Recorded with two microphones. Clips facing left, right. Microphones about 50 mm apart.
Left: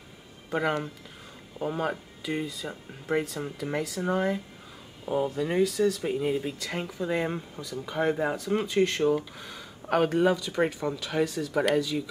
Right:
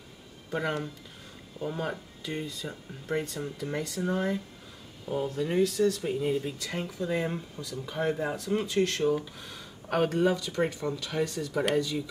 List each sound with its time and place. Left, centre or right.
0.5 s speech: centre
5.0 s speech: centre
5.3 s speech: centre
6.0 s speech: centre